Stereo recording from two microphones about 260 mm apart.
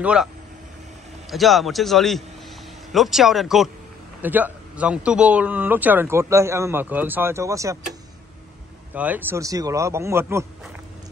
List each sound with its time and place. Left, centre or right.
0.0 s a man's voice: centre
1.3 s a man's voice: centre
8.9 s a man's voice: centre